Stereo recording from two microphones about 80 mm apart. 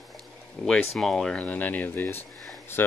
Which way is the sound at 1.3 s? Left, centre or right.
Centre.